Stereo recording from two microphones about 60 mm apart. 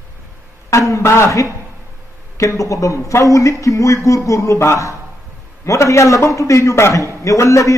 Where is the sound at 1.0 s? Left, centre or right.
Left.